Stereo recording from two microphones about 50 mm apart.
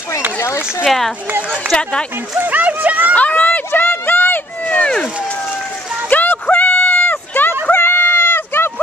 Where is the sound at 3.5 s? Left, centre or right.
Left.